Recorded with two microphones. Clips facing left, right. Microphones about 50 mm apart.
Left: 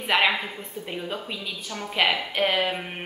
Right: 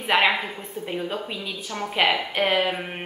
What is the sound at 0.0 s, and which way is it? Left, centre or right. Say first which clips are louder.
A woman's voice: right 2 dB; centre.